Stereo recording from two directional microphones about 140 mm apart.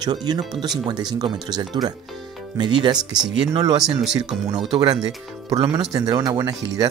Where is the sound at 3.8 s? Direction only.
Centre (ahead or behind).